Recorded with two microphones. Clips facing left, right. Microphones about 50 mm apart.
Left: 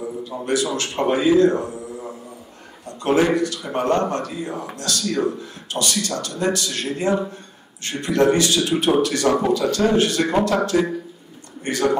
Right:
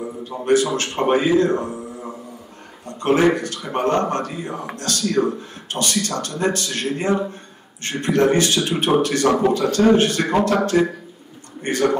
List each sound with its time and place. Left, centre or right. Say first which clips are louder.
0.2 s speech: right 6 dB; right
3.0 s speech: right 1 dB; right